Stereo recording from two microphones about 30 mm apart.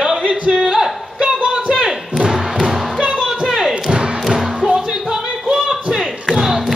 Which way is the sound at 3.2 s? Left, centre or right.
Centre.